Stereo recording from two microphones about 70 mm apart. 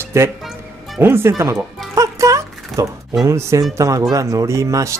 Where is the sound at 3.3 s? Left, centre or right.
Right.